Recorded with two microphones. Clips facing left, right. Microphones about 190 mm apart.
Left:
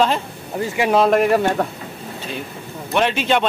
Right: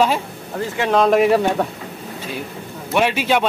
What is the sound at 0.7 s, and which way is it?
Speech, 10° left (ahead or behind).